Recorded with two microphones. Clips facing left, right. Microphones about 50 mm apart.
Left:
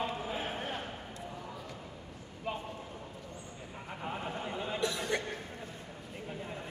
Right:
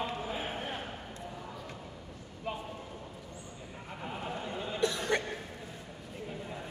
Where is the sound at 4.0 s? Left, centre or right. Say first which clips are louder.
Even; centre.